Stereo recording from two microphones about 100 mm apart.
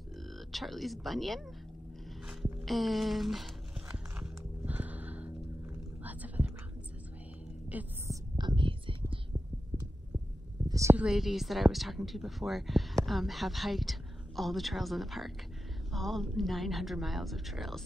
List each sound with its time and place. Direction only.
0.5 s a woman's voice: centre (ahead or behind)
3.9 s a sound: 15° right (ahead or behind)
6.0 s whispering: 15° right (ahead or behind)
7.7 s speech: 15° right (ahead or behind)
8.4 s whispering: 50° right (ahead or behind)
10.7 s a sound: 30° right (ahead or behind)
11.0 s a woman's voice: 5° right (ahead or behind)